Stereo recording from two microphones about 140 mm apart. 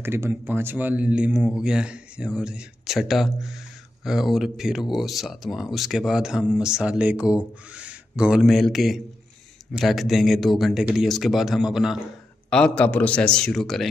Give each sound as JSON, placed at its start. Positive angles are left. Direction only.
{"t": 0.0, "sound": "speech", "side_deg": -15}
{"t": 12.4, "sound": "a man's voice", "side_deg": 5}